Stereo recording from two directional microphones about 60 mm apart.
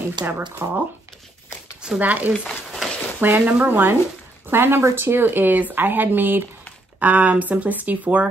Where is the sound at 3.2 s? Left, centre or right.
Right.